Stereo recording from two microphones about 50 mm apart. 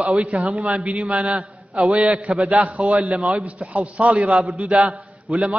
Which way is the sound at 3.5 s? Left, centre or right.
Right.